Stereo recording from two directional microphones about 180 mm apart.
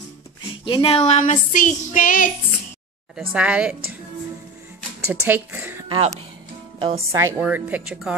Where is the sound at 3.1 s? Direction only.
5° right (ahead or behind).